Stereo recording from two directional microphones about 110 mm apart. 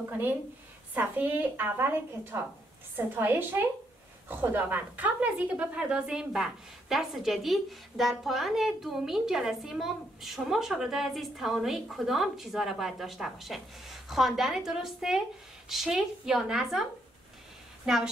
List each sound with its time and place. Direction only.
0.9 s a woman's voice: 15° right (ahead or behind)